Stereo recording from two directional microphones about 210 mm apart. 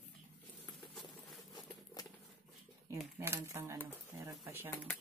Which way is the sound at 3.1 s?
10° right (ahead or behind).